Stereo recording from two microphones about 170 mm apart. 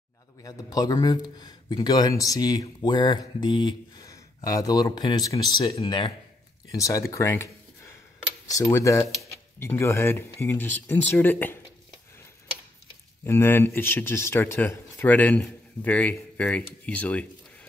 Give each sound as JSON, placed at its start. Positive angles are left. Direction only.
{"t": 0.4, "sound": "speech", "side_deg": 20}
{"t": 13.2, "sound": "speech", "side_deg": 15}